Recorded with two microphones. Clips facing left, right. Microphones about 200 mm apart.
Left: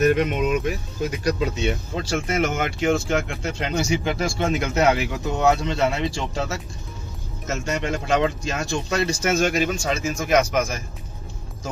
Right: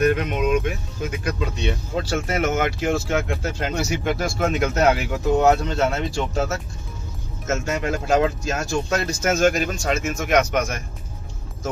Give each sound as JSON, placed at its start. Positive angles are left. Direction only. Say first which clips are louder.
{"t": 0.2, "sound": "speech", "louder": "even", "side_deg": 0}